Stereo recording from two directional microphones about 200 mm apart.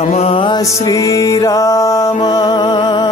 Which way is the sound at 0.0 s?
30° left (ahead or behind).